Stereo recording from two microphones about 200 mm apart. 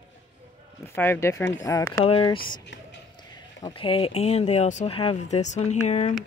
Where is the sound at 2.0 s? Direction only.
25° left (ahead or behind).